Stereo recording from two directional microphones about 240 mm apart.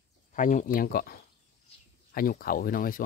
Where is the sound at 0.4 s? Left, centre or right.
Left.